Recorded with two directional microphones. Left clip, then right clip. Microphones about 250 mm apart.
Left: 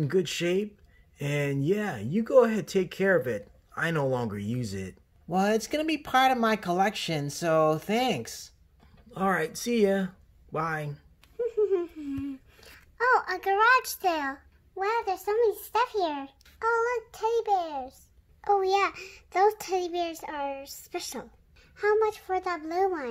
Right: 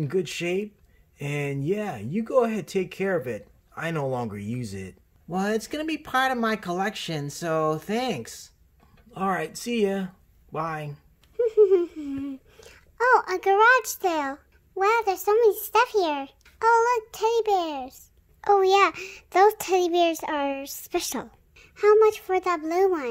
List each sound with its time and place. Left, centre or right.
0.0 s speech: centre
11.3 s a child's voice: right